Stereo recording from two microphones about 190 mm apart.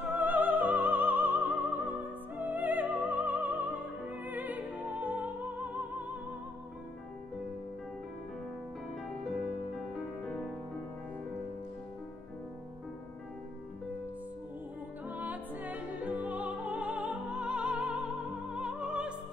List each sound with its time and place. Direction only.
0.0 s music: 10° right (ahead or behind)
15.0 s music: 10° right (ahead or behind)